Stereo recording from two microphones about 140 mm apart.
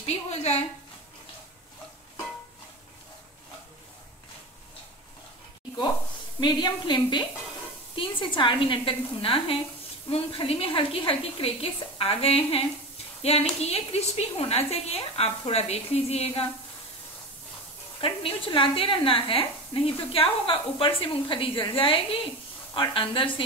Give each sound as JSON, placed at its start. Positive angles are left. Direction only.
{"t": 0.0, "sound": "a sound", "side_deg": 50}
{"t": 6.4, "sound": "a woman's voice", "side_deg": 30}
{"t": 18.0, "sound": "speech", "side_deg": 40}